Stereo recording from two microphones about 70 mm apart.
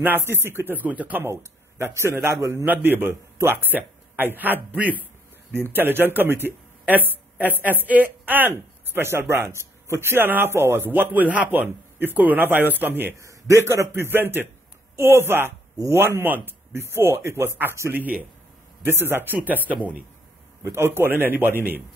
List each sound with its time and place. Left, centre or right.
0.0 s speech: right
1.2 s a man's voice: right
13.2 s a man's voice: right
14.1 s a man's voice: right
17.9 s a man's voice: right
20.6 s a man's voice: right